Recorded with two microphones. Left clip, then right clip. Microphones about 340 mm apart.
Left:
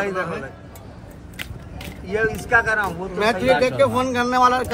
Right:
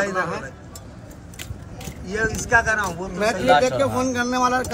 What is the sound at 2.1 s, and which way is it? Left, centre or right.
Speech, centre.